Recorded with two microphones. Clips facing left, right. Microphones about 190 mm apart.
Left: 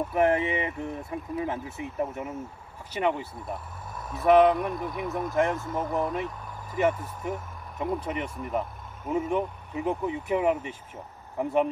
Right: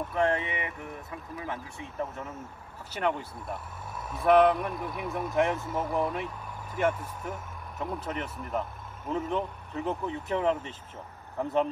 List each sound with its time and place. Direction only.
0.1 s speech: 20° left (ahead or behind)